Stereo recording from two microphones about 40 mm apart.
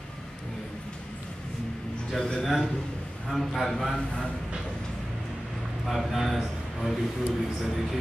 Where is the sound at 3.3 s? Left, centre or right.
Centre.